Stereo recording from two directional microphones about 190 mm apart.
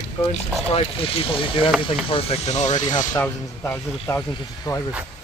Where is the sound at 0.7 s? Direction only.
30° left (ahead or behind).